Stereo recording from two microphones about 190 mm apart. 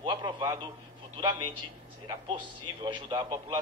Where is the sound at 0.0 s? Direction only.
25° right (ahead or behind).